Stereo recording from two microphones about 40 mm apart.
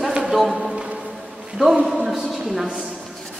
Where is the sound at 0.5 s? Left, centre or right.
Right.